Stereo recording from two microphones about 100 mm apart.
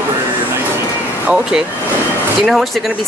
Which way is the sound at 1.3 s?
5° right (ahead or behind).